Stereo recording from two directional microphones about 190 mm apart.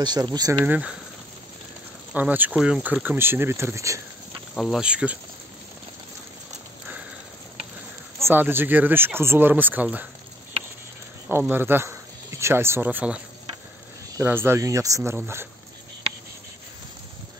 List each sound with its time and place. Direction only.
0.0 s speech: 20° right (ahead or behind)
0.7 s speech: 5° right (ahead or behind)
2.1 s speech: 10° right (ahead or behind)
4.6 s speech: centre (ahead or behind)
8.2 s speech: 10° right (ahead or behind)
11.2 s a man's voice: 10° right (ahead or behind)